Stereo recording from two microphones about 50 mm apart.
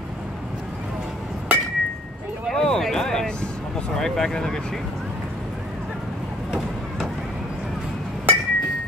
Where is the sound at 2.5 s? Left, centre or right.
Centre.